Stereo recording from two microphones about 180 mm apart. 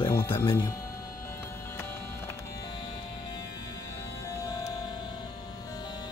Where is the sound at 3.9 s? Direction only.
15° left (ahead or behind).